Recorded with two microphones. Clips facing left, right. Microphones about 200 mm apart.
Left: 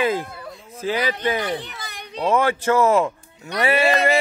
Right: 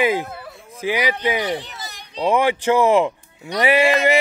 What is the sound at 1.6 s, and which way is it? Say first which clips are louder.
Children playing: left 1 dB; 55° left (ahead or behind).